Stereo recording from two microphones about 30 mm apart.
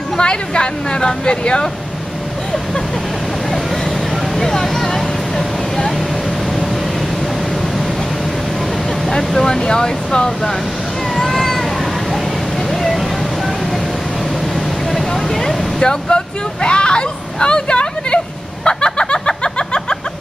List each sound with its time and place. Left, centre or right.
0.2 s speech: left
4.4 s vehicle: centre
9.5 s speech: left
11.1 s cat: centre
14.9 s a sound: centre
15.8 s speech: left
16.6 s a sound: left